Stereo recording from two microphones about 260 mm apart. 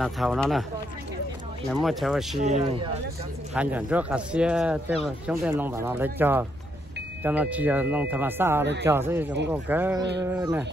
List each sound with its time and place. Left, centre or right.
0.0 s speech: centre
1.7 s speech: centre
2.4 s speech: right
3.5 s speech: centre